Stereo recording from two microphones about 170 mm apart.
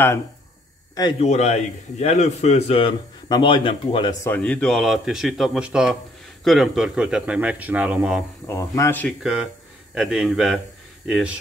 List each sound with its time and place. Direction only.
1.2 s a man's voice: 40° left (ahead or behind)
4.2 s a man's voice: 10° left (ahead or behind); by 8.2 s 5° right (ahead or behind)
8.5 s speech: 15° left (ahead or behind)
9.2 s speech: 5° right (ahead or behind)